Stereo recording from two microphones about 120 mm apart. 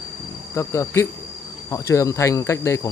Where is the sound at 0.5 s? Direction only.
25° left (ahead or behind).